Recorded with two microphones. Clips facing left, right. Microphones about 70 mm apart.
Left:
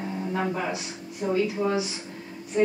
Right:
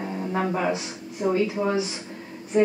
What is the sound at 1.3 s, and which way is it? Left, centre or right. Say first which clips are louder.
Speech: even; right.